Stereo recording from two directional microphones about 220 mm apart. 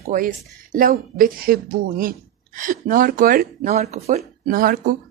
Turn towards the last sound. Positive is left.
turn(degrees=-40)  # may be behind; listen again after turning